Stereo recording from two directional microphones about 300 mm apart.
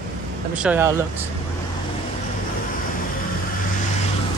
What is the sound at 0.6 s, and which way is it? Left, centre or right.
Speech, centre.